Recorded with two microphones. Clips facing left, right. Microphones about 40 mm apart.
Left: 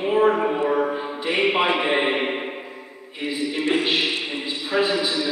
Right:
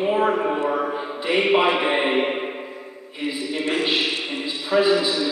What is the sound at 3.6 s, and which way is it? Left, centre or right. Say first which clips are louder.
Speech: even; centre.